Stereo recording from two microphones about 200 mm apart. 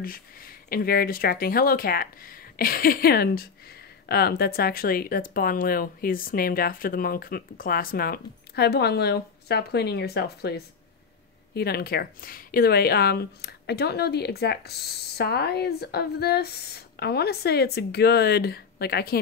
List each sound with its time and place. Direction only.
0.0 s speech: 45° left (ahead or behind)